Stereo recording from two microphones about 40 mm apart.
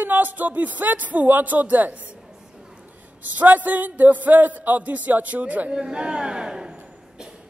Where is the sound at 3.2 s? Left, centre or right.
Right.